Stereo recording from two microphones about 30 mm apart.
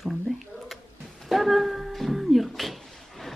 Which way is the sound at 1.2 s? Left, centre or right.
Centre.